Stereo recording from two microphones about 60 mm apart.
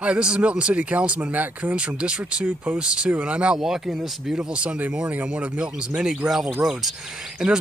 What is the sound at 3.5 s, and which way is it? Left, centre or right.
Speech, centre.